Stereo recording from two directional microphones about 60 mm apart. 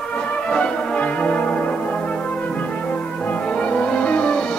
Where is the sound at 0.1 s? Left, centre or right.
Left.